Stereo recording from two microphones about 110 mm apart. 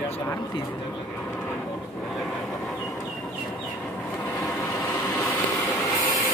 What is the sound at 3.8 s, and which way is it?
Vehicle, 15° left (ahead or behind).